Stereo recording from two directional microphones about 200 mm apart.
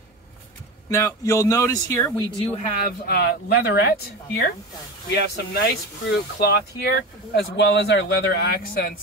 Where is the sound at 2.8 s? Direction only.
50° left (ahead or behind).